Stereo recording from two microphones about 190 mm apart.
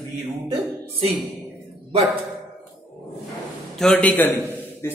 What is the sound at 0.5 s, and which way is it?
Speech, 30° right (ahead or behind).